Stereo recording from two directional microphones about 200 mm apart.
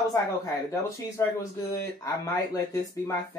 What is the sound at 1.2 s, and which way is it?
Speech, 15° left (ahead or behind).